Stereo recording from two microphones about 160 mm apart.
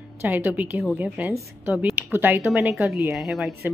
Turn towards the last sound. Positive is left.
turn(degrees=0)  # may be behind; listen again after turning